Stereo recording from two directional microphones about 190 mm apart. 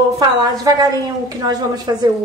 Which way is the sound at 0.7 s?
20° right (ahead or behind).